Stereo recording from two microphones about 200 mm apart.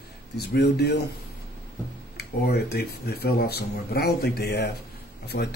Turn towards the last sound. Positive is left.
turn(degrees=55)  # may be behind; listen again after turning